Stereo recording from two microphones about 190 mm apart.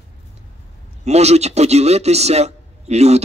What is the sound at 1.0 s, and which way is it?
A man's voice, 35° right (ahead or behind).